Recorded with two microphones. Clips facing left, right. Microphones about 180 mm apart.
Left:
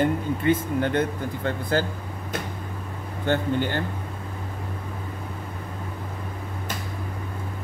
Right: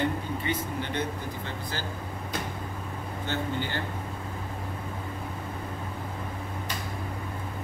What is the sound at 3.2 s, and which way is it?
Speech, 55° left (ahead or behind).